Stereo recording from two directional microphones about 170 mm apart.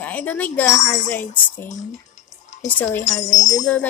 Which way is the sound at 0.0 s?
10° left (ahead or behind).